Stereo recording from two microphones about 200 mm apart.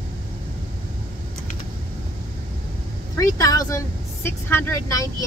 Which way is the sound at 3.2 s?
15° left (ahead or behind).